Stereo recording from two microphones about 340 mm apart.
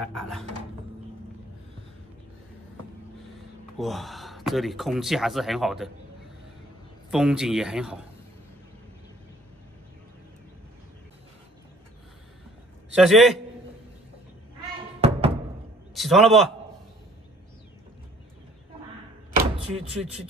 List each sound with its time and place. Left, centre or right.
0.0 s speech: centre
3.7 s speech: centre
7.1 s speech: centre
12.9 s speech: centre
15.0 s music: centre
15.9 s a man's voice: centre
19.7 s speech: centre